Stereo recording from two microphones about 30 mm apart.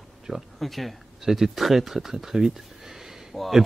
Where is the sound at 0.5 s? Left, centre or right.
Centre.